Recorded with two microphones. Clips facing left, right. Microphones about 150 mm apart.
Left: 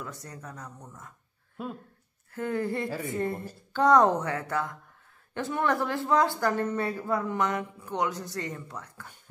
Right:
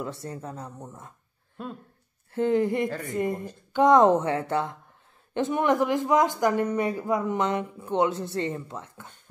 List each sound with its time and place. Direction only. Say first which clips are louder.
0.0 s speech: right 7 dB; 25° right (ahead or behind)
1.6 s speech: even; 5° left (ahead or behind)
2.3 s speech: right 7 dB; 20° right (ahead or behind)